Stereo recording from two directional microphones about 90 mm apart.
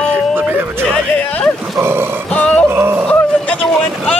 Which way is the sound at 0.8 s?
10° left (ahead or behind).